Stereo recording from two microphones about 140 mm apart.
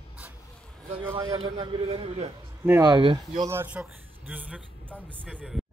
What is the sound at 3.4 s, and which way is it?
A man's voice, 15° right (ahead or behind).